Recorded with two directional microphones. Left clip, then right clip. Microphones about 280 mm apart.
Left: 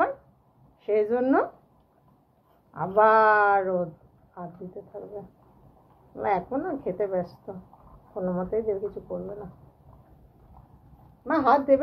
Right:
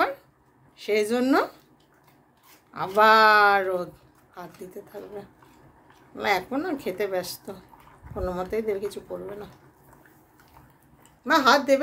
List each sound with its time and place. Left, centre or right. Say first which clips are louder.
0.7 s a woman's voice: even; right
2.7 s a woman's voice: right 2 dB; right
6.1 s a woman's voice: right 1 dB; right
11.2 s a woman's voice: right 2 dB; centre